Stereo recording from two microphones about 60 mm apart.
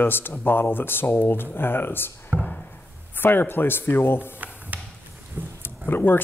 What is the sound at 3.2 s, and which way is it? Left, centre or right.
Speech, left.